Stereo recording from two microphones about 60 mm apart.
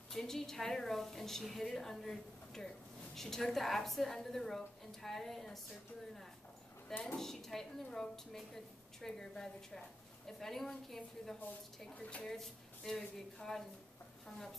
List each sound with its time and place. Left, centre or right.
0.1 s a woman's voice: centre
6.9 s speech: left
7.2 s a woman's voice: centre
12.0 s a woman's voice: centre
12.3 s a woman's voice: centre